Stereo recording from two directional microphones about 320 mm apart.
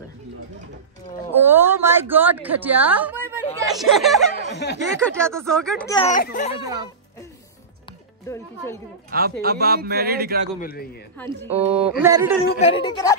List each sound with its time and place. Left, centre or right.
1.4 s a sound: centre
3.6 s speech: centre
4.4 s speech: left
5.0 s speech: centre
5.9 s speech: left
8.3 s speech: centre
9.4 s speech: right
10.6 s speech: left
11.5 s a man's voice: centre
12.5 s speech: centre